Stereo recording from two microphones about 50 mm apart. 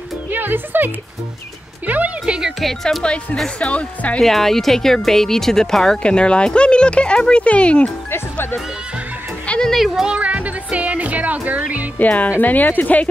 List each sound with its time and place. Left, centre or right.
0.3 s music: right
2.2 s music: centre
2.6 s speech: centre
3.5 s speech: left
4.2 s speech: centre
6.0 s speech: left
8.1 s music: left
9.8 s speech: centre
10.0 s music: right
12.0 s speech: left